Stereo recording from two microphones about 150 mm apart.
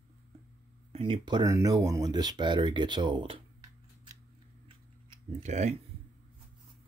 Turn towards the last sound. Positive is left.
turn(degrees=-50)  # may be behind; listen again after turning